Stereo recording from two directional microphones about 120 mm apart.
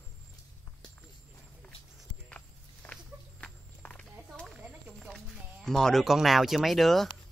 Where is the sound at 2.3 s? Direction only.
10° left (ahead or behind).